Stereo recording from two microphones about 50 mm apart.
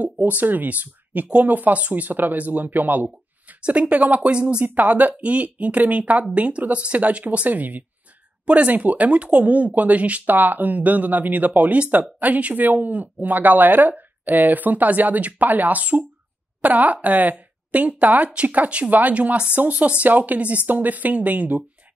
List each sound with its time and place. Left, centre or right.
0.0 s speech: right
3.6 s a woman's voice: right
4.6 s a woman's voice: right